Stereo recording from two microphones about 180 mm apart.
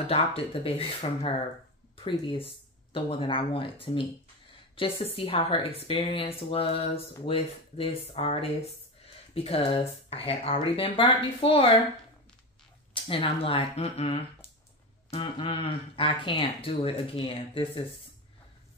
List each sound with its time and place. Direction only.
0.0 s speech: 35° left (ahead or behind)
12.9 s speech: 30° left (ahead or behind)